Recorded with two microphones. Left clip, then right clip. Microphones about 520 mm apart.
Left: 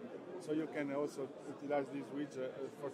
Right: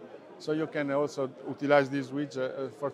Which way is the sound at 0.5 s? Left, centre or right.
Right.